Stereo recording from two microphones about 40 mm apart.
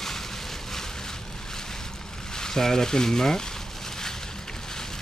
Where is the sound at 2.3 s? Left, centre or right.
Centre.